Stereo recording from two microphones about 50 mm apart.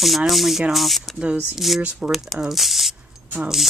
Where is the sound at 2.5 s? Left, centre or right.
Centre.